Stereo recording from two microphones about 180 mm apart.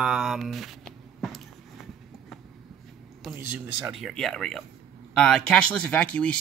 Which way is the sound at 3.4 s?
10° right (ahead or behind).